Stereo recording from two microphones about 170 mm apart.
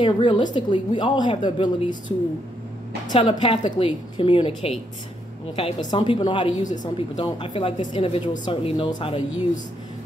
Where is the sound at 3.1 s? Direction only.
25° left (ahead or behind).